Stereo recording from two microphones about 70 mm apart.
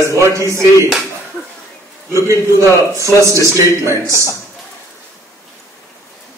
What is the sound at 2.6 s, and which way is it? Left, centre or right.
A man's voice, right.